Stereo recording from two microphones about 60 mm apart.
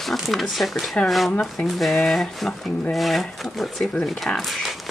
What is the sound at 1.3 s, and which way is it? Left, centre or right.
Speech, centre.